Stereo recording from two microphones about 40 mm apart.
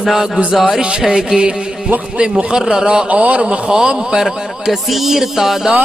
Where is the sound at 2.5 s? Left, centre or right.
Centre.